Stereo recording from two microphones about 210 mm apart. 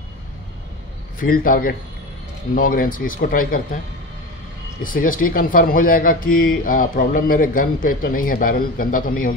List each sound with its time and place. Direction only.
1.2 s speech: 40° left (ahead or behind)
4.8 s speech: 40° left (ahead or behind)